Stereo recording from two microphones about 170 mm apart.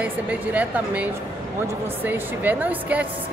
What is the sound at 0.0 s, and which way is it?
A woman's voice, 10° right (ahead or behind).